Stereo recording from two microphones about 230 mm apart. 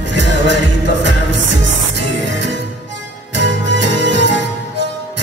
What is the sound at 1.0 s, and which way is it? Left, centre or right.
Music, right.